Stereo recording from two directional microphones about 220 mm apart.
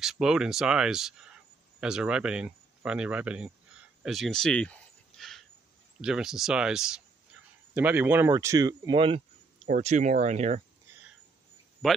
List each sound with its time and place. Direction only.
0.0 s speech: centre (ahead or behind); by 9.2 s 25° right (ahead or behind)
9.7 s speech: 35° right (ahead or behind)
11.8 s speech: centre (ahead or behind)